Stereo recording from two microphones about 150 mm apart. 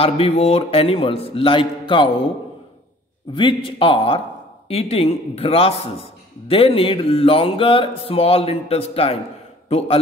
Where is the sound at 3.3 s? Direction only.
35° left (ahead or behind).